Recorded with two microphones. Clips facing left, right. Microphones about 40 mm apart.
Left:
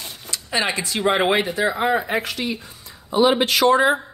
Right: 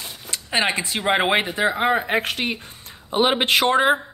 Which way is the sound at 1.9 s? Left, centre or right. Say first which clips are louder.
Right 1 dB; right.